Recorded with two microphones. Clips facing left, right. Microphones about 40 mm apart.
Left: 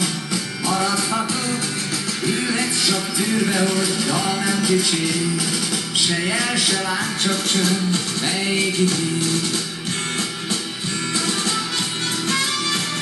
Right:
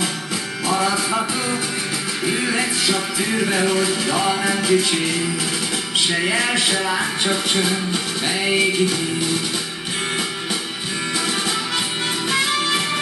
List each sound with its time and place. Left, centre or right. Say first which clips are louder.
0.7 s music: right 1 dB; centre
12.3 s music: right 3 dB; centre